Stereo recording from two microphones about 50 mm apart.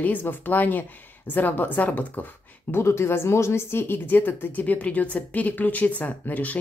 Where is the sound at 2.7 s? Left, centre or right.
Left.